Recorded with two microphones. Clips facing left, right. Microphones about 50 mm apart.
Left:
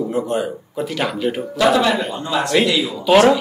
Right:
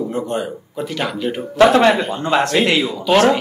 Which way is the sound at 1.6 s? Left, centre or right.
Right.